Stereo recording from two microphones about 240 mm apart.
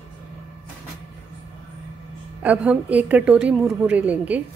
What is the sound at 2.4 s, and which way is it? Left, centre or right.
A woman's voice, centre.